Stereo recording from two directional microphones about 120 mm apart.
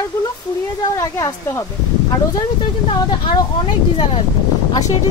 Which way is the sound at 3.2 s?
40° left (ahead or behind).